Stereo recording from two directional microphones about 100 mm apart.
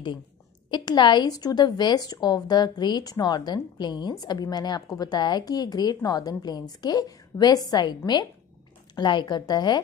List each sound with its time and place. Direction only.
0.7 s a woman's voice: 50° left (ahead or behind)